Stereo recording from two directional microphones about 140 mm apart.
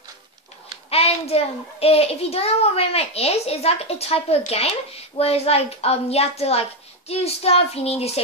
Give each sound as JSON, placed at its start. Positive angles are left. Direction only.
{"t": 0.8, "sound": "a child's voice", "side_deg": 45}